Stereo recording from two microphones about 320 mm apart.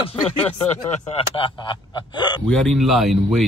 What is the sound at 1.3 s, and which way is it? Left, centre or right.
Speech, centre.